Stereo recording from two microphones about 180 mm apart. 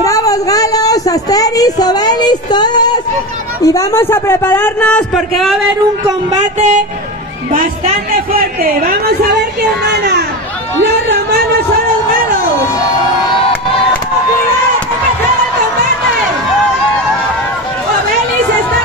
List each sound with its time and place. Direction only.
0.0 s speech: 20° left (ahead or behind); by 5.6 s centre (ahead or behind)
6.3 s a sound: 40° right (ahead or behind)
7.5 s speech: 50° right (ahead or behind)
9.3 s speech: 65° right (ahead or behind)